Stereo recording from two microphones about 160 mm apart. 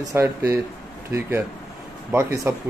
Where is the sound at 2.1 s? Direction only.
20° right (ahead or behind).